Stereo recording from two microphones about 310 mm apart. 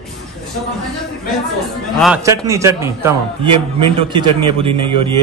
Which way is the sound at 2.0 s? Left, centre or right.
Centre.